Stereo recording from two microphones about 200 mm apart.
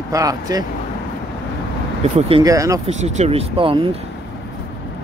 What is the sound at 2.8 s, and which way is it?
Speech, 30° right (ahead or behind).